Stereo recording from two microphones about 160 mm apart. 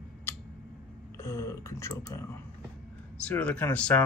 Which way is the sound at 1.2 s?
15° left (ahead or behind).